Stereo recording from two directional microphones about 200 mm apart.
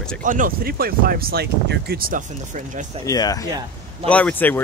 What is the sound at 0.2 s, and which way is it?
Speech, 40° right (ahead or behind).